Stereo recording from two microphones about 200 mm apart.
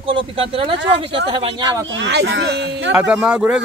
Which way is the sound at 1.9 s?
60° right (ahead or behind).